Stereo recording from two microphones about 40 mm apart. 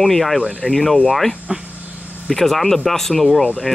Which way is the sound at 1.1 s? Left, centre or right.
Centre.